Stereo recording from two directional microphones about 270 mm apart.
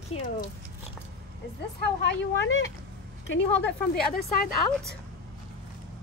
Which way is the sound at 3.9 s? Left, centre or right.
Left.